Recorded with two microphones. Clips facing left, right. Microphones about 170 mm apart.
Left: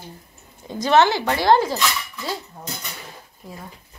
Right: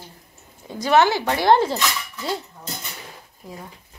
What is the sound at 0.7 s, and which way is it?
Speech, 5° right (ahead or behind).